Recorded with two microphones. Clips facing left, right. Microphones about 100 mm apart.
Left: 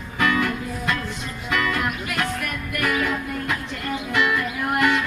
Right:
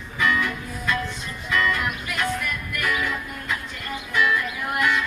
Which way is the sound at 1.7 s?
55° left (ahead or behind).